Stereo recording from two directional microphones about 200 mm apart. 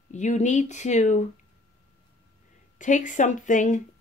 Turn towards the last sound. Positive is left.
turn(degrees=40)  # may be behind; listen again after turning